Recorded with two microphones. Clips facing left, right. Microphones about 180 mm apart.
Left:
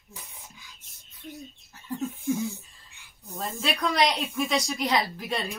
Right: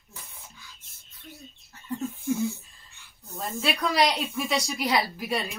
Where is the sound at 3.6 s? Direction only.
5° right (ahead or behind).